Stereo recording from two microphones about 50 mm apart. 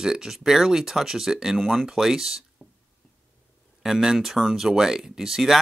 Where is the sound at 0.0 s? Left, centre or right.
Centre.